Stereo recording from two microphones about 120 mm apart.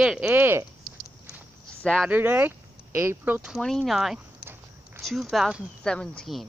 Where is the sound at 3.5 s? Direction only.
5° left (ahead or behind).